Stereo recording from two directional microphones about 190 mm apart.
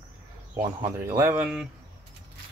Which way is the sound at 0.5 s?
15° right (ahead or behind).